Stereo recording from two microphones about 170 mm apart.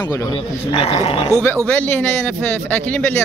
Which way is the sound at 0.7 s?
35° left (ahead or behind).